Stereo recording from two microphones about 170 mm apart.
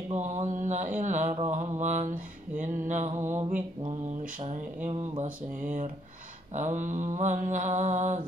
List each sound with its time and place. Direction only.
0.1 s a sound: 45° right (ahead or behind)
1.4 s mantra: 40° right (ahead or behind)
3.2 s mantra: 15° right (ahead or behind)
5.2 s mantra: 50° right (ahead or behind)